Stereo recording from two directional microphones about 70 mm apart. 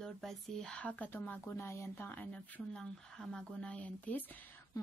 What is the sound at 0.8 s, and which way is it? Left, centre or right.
Speech, left.